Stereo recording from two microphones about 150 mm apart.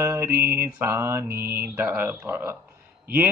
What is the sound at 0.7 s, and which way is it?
A man's voice, 15° right (ahead or behind).